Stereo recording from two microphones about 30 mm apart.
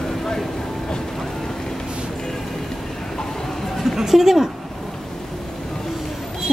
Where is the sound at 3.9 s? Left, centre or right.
Centre.